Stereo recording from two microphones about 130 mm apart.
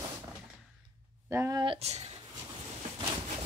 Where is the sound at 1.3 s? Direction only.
20° right (ahead or behind).